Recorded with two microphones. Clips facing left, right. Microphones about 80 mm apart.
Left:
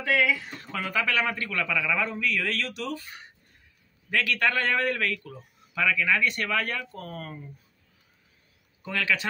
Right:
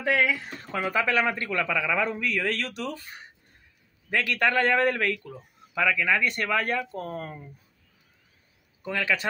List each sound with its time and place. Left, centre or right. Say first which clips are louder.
0.0 s a man's voice: even; right
4.1 s a man's voice: right 1 dB; right
8.8 s a man's voice: right 1 dB; right